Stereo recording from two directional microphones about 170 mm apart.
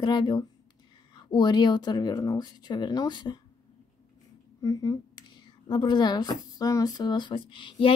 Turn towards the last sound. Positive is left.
turn(degrees=30)  # may be behind; listen again after turning